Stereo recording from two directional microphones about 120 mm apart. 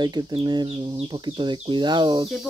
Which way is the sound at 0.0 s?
35° right (ahead or behind).